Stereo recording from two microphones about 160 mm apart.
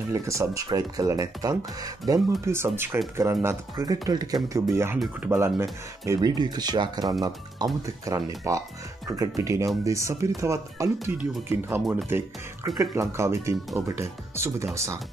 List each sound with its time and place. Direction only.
0.1 s speech: 20° right (ahead or behind)
4.9 s speech: centre (ahead or behind)
5.3 s speech: 15° right (ahead or behind)
11.8 s speech: centre (ahead or behind)
12.6 s speech: 20° right (ahead or behind)